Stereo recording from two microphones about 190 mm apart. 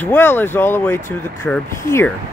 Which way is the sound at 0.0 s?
10° left (ahead or behind).